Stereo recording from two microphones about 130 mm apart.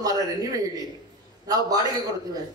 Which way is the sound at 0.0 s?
30° right (ahead or behind).